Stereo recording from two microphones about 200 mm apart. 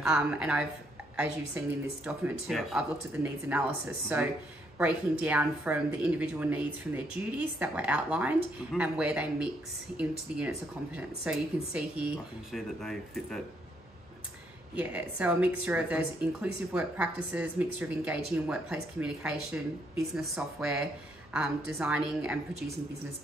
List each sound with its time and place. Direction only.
0.0 s a woman's voice: 5° right (ahead or behind)
11.0 s speech: 5° right (ahead or behind)
14.8 s a woman's voice: 10° right (ahead or behind)